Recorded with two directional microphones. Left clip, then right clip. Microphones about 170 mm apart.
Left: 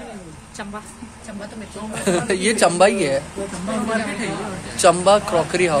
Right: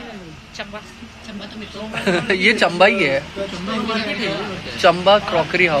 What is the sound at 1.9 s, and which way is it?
Speech, 5° left (ahead or behind).